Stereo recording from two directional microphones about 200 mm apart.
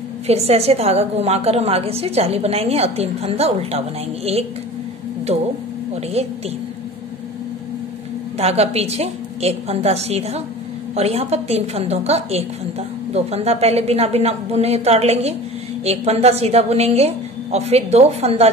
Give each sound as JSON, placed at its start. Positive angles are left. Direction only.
{"t": 0.3, "sound": "a woman's voice", "side_deg": -30}
{"t": 8.4, "sound": "a woman's voice", "side_deg": -30}